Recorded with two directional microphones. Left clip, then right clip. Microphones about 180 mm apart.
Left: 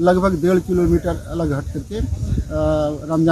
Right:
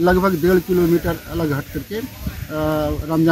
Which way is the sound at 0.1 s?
30° left (ahead or behind).